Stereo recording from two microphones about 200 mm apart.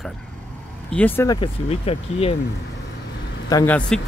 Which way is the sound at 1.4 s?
30° left (ahead or behind).